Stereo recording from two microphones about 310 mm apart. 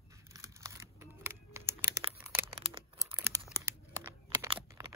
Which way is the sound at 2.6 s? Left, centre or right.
Centre.